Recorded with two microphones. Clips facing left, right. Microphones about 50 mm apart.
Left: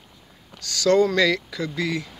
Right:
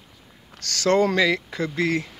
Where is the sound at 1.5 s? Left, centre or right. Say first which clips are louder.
Right 2 dB; right.